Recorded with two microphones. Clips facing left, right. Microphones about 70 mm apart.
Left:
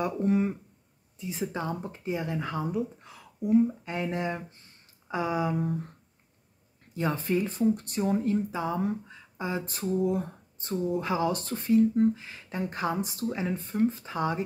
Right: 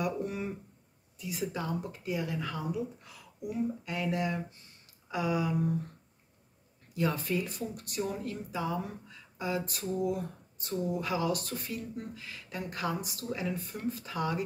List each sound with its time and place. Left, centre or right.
0.0 s speech: left
6.9 s speech: left